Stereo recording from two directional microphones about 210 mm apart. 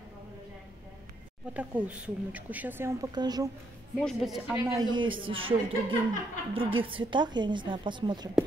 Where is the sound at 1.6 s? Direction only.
5° right (ahead or behind).